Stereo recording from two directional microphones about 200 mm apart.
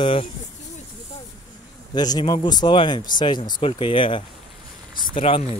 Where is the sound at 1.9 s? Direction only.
20° left (ahead or behind).